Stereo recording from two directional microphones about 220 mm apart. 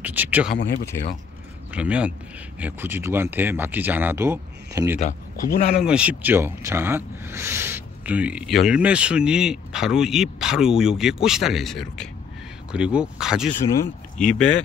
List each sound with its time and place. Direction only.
0.0 s speech: 5° right (ahead or behind)
1.7 s speech: 5° right (ahead or behind)
5.0 s speech: 30° left (ahead or behind)
5.8 s speech: 5° right (ahead or behind)